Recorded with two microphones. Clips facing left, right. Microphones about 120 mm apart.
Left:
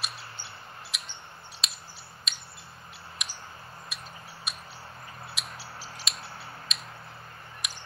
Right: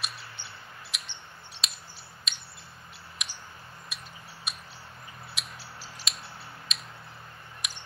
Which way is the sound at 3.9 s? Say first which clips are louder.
Even; centre (ahead or behind).